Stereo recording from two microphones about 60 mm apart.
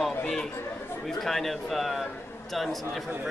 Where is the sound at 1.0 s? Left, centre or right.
Centre.